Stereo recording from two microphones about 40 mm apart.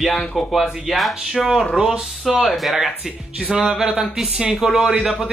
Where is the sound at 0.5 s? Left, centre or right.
Centre.